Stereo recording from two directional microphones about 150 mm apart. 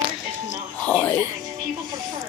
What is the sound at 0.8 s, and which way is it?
Music, 10° left (ahead or behind).